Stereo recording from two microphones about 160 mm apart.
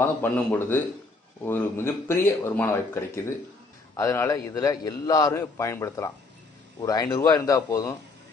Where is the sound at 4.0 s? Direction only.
20° left (ahead or behind).